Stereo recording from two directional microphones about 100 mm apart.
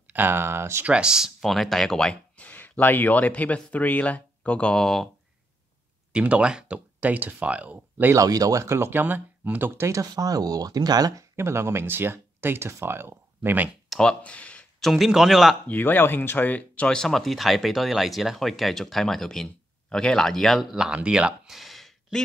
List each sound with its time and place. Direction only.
0.1 s speech: 20° right (ahead or behind)
0.8 s speech: 10° right (ahead or behind)
6.1 s speech: 10° right (ahead or behind)
8.2 s speech: 35° right (ahead or behind)
11.3 s speech: 25° right (ahead or behind)
13.8 s a sound: 5° left (ahead or behind)
14.9 s speech: 5° right (ahead or behind)
15.7 s speech: 20° left (ahead or behind); by 22.2 s centre (ahead or behind)